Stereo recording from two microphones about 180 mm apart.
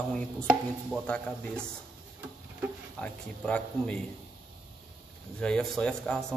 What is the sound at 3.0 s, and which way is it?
A man's voice, 5° left (ahead or behind).